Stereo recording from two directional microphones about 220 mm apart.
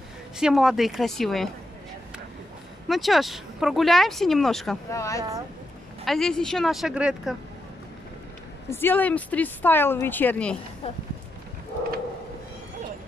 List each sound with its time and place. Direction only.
0.4 s speech: centre (ahead or behind)
2.9 s speech: centre (ahead or behind)
4.9 s speech: 15° left (ahead or behind)
6.0 s speech: centre (ahead or behind)
8.6 s speech: 10° left (ahead or behind)